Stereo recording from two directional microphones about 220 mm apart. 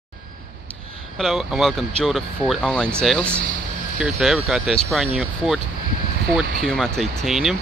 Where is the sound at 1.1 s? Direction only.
Centre (ahead or behind).